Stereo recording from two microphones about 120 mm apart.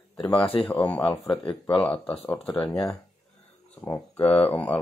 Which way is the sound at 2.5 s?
50° left (ahead or behind).